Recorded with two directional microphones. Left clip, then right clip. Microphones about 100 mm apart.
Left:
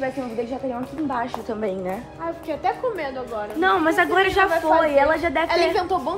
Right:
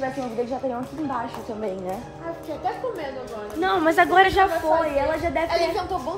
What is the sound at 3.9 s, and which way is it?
Speech, 30° right (ahead or behind).